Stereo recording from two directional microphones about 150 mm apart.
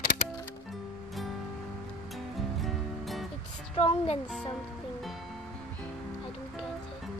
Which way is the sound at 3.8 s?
40° left (ahead or behind).